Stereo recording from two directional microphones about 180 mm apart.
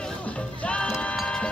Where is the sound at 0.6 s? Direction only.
5° left (ahead or behind).